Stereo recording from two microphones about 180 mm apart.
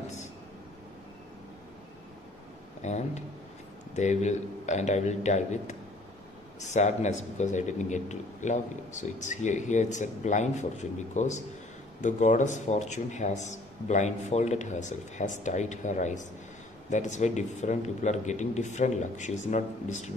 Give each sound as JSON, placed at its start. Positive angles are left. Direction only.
{"t": 2.8, "sound": "a man's voice", "side_deg": 40}